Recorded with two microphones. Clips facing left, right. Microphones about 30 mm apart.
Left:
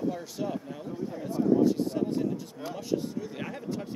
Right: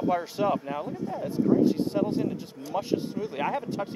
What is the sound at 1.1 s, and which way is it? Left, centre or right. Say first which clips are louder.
Speech: right 1 dB; right.